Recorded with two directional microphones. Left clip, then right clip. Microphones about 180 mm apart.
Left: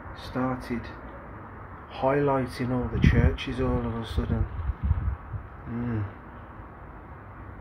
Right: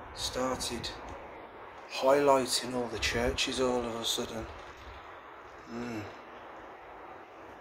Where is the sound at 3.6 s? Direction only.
20° right (ahead or behind).